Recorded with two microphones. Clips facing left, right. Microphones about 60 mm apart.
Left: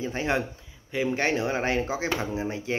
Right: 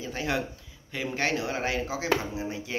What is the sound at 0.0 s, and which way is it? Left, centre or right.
Speech, left.